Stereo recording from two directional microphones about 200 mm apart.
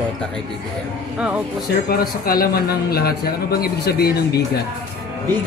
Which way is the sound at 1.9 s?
50° left (ahead or behind).